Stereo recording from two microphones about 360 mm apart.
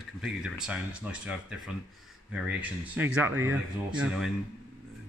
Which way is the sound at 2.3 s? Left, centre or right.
Centre.